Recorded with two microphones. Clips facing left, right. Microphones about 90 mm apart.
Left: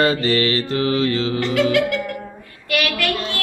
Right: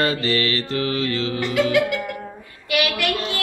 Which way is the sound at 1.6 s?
Centre (ahead or behind).